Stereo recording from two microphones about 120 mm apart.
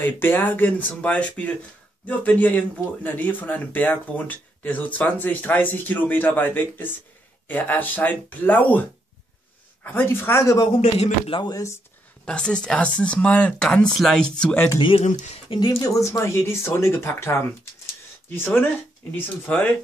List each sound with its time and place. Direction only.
0.0 s speech: 15° left (ahead or behind)
9.8 s speech: 15° left (ahead or behind)
10.8 s speech: 55° left (ahead or behind)
11.4 s speech: 25° left (ahead or behind)
12.3 s speech: 5° left (ahead or behind)
14.8 s speech: 45° left (ahead or behind)
15.8 s speech: 25° left (ahead or behind)